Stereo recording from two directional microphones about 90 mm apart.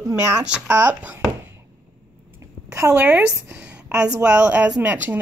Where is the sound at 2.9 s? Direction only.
15° right (ahead or behind).